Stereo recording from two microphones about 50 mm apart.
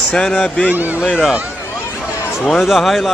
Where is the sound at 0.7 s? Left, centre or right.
Right.